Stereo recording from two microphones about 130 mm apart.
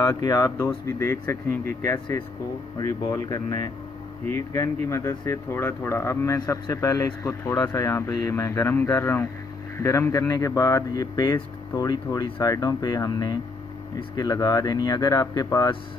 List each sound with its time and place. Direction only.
0.0 s speech: 30° left (ahead or behind)
1.6 s speech: 90° right
2.8 s speech: 25° left (ahead or behind)